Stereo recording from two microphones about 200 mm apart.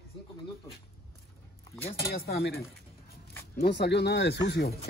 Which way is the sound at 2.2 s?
50° left (ahead or behind).